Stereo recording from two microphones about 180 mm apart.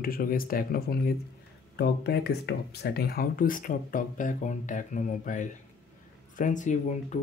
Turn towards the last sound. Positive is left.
turn(degrees=45)  # may be behind; listen again after turning